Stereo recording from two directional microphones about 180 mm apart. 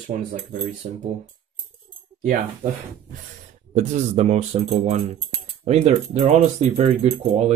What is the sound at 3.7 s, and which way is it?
Speech, 40° right (ahead or behind).